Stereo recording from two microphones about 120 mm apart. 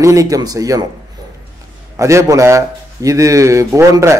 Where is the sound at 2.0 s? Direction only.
25° right (ahead or behind).